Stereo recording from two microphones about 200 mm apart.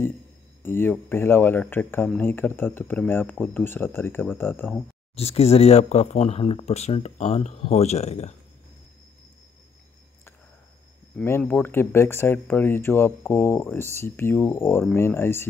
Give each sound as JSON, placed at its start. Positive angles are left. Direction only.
{"t": 0.7, "sound": "speech", "side_deg": 10}
{"t": 5.1, "sound": "speech", "side_deg": 30}
{"t": 11.1, "sound": "speech", "side_deg": 10}